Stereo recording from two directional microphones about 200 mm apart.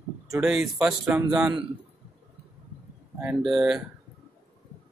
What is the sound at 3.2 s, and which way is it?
Speech, 5° right (ahead or behind).